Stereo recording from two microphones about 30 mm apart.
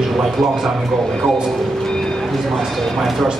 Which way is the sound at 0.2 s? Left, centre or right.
Centre.